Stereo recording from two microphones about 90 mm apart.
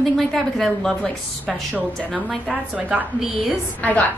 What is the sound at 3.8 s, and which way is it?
Speech, 15° left (ahead or behind).